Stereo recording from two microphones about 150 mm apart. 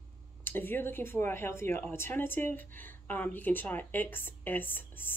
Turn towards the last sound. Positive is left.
turn(degrees=15)  # may be behind; listen again after turning